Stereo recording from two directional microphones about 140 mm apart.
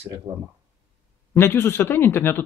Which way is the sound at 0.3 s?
30° right (ahead or behind).